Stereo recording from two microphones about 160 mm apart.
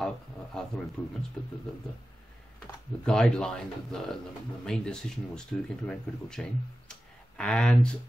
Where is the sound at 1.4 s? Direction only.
5° left (ahead or behind).